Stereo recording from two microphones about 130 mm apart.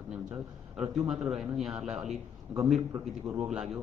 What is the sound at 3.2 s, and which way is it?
Speech, 25° right (ahead or behind).